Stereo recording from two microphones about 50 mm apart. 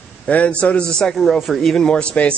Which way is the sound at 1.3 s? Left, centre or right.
Centre.